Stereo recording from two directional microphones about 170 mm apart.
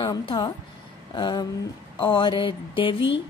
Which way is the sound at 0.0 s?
25° left (ahead or behind).